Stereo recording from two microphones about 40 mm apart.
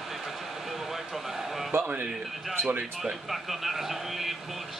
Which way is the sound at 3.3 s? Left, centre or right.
Centre.